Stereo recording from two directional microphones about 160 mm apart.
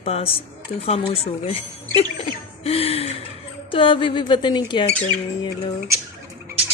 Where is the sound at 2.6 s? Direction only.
40° left (ahead or behind).